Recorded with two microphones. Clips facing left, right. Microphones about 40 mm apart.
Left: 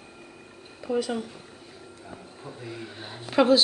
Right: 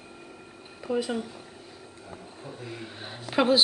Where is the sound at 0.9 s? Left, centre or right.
Centre.